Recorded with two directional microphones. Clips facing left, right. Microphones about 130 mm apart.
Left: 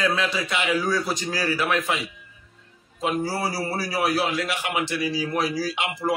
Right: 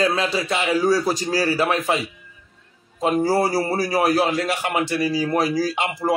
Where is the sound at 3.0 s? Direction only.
40° right (ahead or behind).